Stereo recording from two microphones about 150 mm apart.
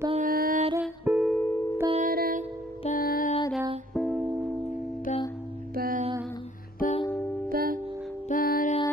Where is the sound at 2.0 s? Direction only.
70° right (ahead or behind).